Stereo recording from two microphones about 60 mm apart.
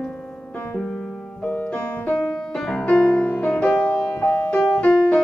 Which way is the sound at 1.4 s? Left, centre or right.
Left.